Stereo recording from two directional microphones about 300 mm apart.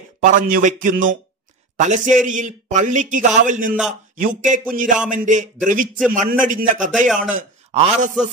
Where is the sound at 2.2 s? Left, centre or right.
Right.